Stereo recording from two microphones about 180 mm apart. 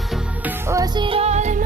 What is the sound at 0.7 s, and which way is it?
Music, 20° right (ahead or behind).